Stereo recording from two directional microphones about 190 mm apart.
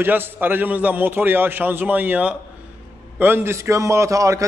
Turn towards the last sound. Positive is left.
turn(degrees=-15)  # may be behind; listen again after turning